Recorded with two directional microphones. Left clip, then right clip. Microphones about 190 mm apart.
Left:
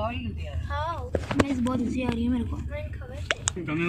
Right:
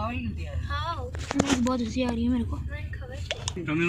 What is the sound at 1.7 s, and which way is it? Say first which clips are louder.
Speech: even; centre (ahead or behind).